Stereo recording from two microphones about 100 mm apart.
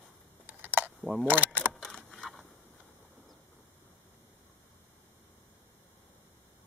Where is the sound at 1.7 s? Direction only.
5° left (ahead or behind).